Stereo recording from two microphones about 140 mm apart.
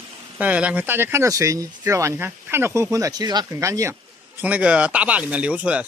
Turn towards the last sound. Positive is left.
turn(degrees=-10)  # may be behind; listen again after turning